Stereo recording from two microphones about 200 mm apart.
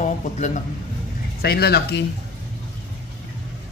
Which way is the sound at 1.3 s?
50° left (ahead or behind).